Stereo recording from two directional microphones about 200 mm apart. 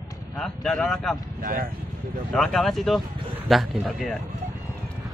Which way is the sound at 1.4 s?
45° right (ahead or behind).